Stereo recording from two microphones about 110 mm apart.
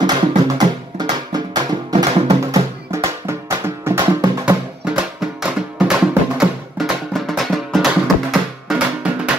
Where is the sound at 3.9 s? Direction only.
20° right (ahead or behind).